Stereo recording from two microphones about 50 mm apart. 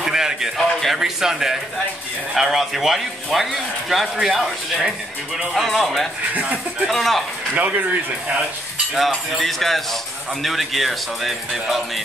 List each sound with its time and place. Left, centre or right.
0.0 s a sound: centre
0.9 s a man's voice: centre
7.5 s speech: right
8.9 s a man's voice: centre